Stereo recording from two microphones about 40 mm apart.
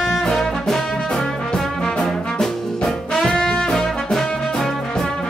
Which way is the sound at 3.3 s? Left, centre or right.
Centre.